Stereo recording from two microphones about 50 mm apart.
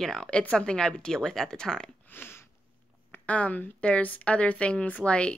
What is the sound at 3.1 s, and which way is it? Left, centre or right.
A woman's voice, left.